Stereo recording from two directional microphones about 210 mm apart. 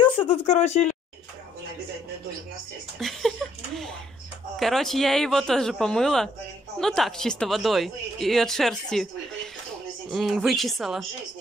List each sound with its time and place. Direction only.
0.0 s speech: 25° left (ahead or behind)
3.0 s speech: centre (ahead or behind)